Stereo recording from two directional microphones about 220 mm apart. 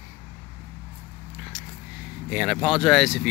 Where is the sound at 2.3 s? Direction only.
Centre (ahead or behind).